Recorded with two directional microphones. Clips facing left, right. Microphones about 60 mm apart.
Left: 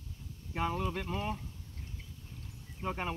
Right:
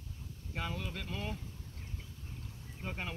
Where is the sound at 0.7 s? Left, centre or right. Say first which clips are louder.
Left 6 dB; left.